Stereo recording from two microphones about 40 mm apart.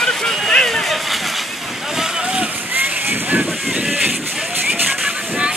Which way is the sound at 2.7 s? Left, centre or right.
Right.